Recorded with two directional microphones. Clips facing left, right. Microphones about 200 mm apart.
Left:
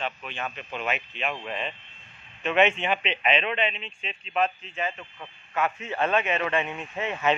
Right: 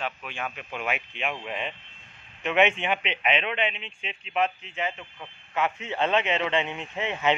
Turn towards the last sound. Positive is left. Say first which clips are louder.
# even
turn(degrees=-20)  # may be behind; listen again after turning